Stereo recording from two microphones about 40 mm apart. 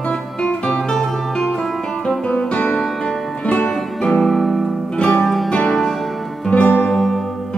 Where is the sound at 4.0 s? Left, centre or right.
Centre.